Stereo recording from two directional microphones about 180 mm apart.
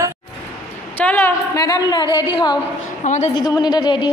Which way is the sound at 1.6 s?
20° left (ahead or behind).